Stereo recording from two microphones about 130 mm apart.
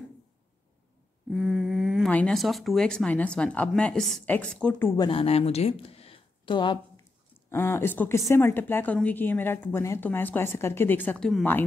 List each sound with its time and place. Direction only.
1.3 s a sound: 5° right (ahead or behind)
2.0 s a woman's voice: 10° left (ahead or behind)
4.9 s speech: 35° left (ahead or behind)
5.2 s speech: 50° left (ahead or behind)
7.4 s a woman's voice: 20° left (ahead or behind)